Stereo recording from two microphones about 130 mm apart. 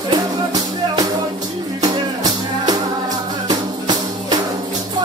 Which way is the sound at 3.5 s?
30° right (ahead or behind).